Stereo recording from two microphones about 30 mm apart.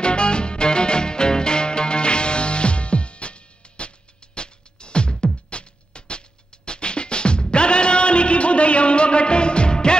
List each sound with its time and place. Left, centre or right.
0.0 s music: left